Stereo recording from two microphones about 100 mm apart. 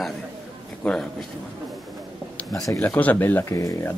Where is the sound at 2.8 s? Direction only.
15° left (ahead or behind).